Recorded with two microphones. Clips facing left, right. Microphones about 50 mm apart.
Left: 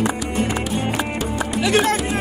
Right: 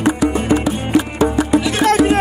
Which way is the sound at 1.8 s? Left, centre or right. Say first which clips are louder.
Right 8 dB; right.